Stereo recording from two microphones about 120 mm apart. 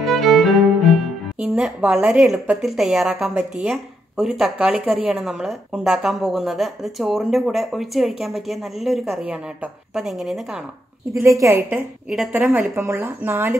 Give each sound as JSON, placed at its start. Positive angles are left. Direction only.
{"t": 0.0, "sound": "music", "side_deg": 0}
{"t": 1.4, "sound": "a woman's voice", "side_deg": -10}
{"t": 11.1, "sound": "speech", "side_deg": -25}
{"t": 12.1, "sound": "speech", "side_deg": -5}